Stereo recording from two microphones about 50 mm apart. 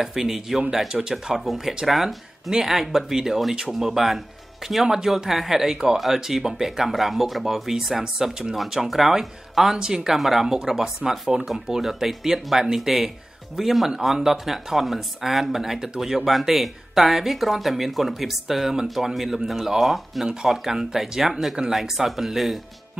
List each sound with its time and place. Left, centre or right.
0.0 s speech: centre
9.8 s speech: centre
10.1 s speech: centre